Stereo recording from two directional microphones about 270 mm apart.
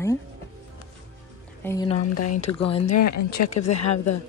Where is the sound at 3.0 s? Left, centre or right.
Left.